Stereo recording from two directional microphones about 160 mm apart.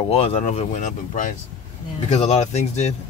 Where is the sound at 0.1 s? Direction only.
40° left (ahead or behind).